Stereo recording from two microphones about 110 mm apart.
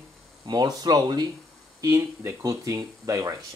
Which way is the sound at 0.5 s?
40° right (ahead or behind).